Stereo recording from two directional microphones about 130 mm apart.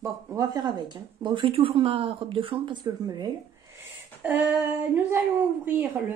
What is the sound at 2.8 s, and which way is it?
Speech, 30° right (ahead or behind).